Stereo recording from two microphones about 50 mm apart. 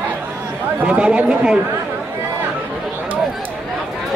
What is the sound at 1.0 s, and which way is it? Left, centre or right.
Speech, centre.